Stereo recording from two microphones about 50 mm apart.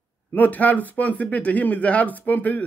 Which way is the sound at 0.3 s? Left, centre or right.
Left.